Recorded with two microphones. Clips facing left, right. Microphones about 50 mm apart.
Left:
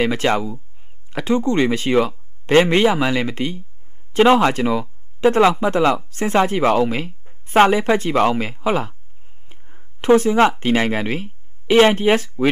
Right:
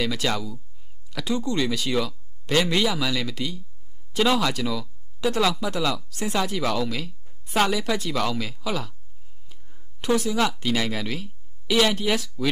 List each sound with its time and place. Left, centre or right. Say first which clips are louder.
0.0 s speech: left 8 dB; left